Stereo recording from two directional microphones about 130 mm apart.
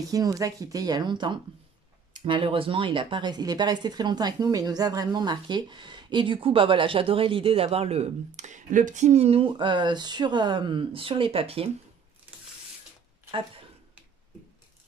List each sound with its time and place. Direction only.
0.0 s speech: 25° right (ahead or behind); by 11.7 s 45° right (ahead or behind)